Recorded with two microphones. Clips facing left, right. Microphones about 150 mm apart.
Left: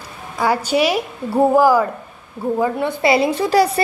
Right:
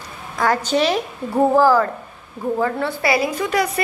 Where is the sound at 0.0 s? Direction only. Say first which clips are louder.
Left 1 dB; 10° left (ahead or behind).